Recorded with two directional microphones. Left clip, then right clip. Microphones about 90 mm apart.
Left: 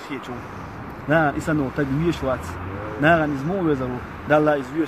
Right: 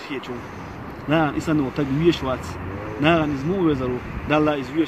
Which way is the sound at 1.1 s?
45° left (ahead or behind).